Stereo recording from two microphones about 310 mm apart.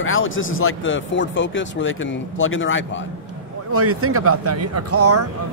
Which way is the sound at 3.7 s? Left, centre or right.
Right.